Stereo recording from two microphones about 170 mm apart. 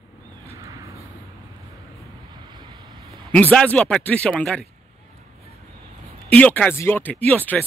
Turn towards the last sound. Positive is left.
turn(degrees=10)  # may be behind; listen again after turning